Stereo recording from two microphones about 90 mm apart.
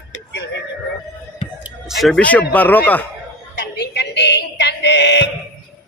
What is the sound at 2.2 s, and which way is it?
Speech, 15° left (ahead or behind).